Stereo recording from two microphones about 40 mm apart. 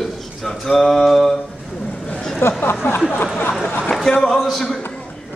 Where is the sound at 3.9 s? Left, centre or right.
Centre.